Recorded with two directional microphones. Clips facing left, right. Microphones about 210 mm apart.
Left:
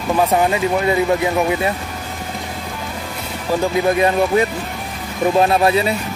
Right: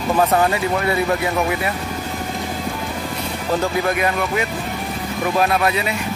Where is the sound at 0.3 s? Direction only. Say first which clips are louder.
Left 2 dB; 15° left (ahead or behind).